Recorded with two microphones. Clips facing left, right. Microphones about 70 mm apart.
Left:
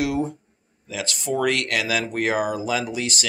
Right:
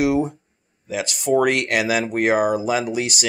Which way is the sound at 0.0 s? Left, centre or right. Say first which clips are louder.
Right 5 dB; right.